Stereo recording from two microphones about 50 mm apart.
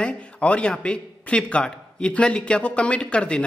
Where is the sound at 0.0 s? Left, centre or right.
Left.